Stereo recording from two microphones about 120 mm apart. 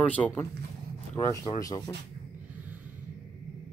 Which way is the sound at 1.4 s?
30° left (ahead or behind).